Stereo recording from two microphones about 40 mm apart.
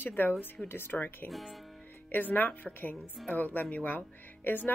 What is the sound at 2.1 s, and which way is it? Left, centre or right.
A woman's voice, left.